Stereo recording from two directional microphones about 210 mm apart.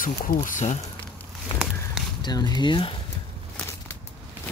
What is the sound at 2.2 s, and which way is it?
Speech, 20° left (ahead or behind).